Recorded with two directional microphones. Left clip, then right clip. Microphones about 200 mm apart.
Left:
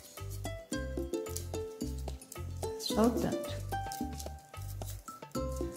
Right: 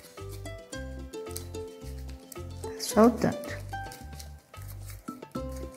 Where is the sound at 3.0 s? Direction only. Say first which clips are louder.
Right 9 dB; 25° right (ahead or behind).